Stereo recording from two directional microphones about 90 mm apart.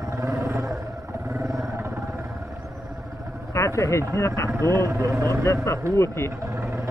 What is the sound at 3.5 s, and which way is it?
Vehicle, 35° left (ahead or behind).